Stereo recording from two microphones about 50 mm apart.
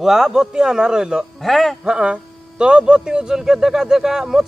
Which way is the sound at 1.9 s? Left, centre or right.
Centre.